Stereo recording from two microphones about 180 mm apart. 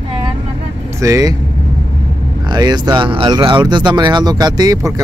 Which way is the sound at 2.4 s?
25° right (ahead or behind).